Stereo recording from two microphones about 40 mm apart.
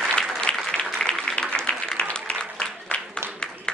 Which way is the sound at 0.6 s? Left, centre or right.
Centre.